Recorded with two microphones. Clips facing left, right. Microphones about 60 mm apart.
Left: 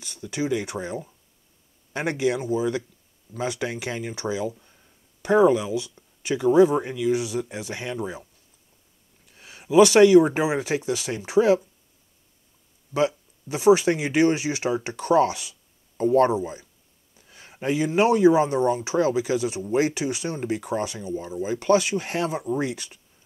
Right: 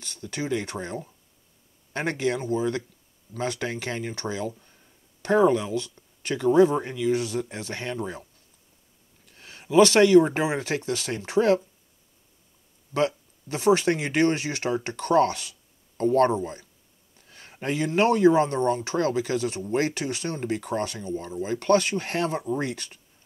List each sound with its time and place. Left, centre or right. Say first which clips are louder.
0.0 s speech: left 4 dB; centre
9.3 s speech: left 2 dB; centre
12.9 s speech: left 2 dB; centre